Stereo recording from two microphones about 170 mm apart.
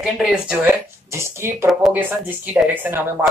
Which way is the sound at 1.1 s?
15° right (ahead or behind).